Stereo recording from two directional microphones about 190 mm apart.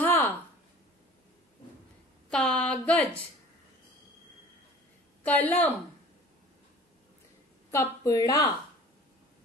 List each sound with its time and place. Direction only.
0.0 s a sound: 10° left (ahead or behind)
2.3 s speech: 5° left (ahead or behind)
5.2 s a woman's voice: 10° left (ahead or behind)
7.7 s a woman's voice: 15° left (ahead or behind)